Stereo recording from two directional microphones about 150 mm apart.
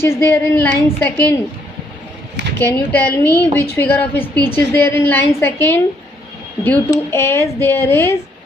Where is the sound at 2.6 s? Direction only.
15° left (ahead or behind).